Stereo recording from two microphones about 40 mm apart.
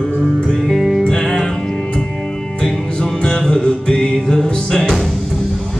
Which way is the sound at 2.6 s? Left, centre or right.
Centre.